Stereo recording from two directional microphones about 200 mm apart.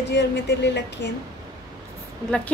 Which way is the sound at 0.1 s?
60° left (ahead or behind).